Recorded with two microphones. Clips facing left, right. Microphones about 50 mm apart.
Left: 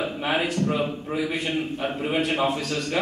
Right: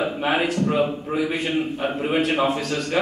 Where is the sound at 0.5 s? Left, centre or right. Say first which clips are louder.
Right 4 dB; centre.